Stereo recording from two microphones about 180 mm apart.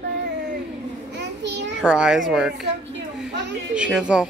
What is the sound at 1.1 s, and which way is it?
Child singing, 75° right (ahead or behind).